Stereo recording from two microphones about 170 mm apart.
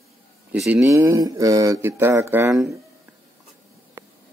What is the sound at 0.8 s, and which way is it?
Speech, 15° right (ahead or behind).